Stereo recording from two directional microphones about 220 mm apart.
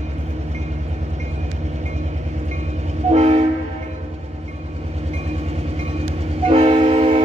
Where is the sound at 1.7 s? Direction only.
30° right (ahead or behind).